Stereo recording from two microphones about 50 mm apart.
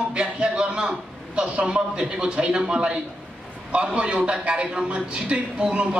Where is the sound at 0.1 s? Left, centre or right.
Centre.